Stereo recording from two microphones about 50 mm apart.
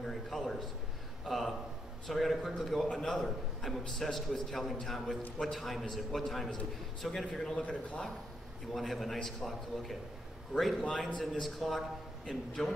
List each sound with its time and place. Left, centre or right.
0.0 s a man's voice: centre
7.6 s speech: left
8.7 s a man's voice: centre